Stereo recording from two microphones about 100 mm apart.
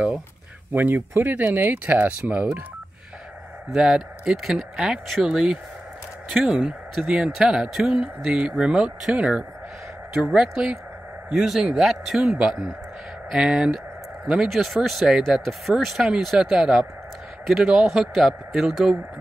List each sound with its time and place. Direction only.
0.7 s speech: 20° right (ahead or behind)
3.7 s speech: 5° right (ahead or behind)
17.8 s speech: 5° right (ahead or behind)